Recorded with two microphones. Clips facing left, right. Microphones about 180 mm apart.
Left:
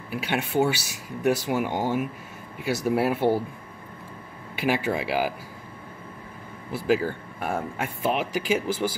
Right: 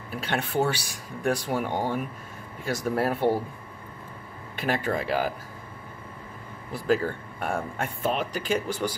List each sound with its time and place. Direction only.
0.1 s speech: 5° left (ahead or behind)
4.6 s speech: 5° left (ahead or behind)
6.7 s speech: 5° left (ahead or behind)